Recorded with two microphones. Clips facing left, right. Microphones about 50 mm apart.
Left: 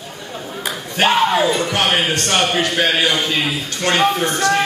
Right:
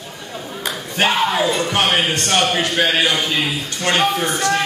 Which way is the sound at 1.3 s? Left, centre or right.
Centre.